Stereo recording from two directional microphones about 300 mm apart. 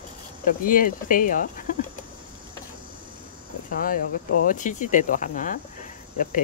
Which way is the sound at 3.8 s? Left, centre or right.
Left.